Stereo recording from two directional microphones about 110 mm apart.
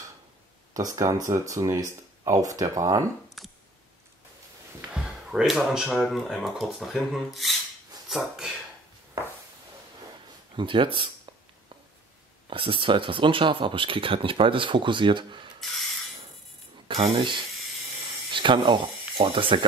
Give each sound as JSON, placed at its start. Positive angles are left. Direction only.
{"t": 0.7, "sound": "speech", "side_deg": -30}
{"t": 3.3, "sound": "a sound", "side_deg": 0}
{"t": 4.9, "sound": "speech", "side_deg": -5}
{"t": 10.5, "sound": "speech", "side_deg": -50}
{"t": 12.4, "sound": "speech", "side_deg": -50}
{"t": 16.8, "sound": "speech", "side_deg": -55}
{"t": 18.0, "sound": "a sound", "side_deg": -50}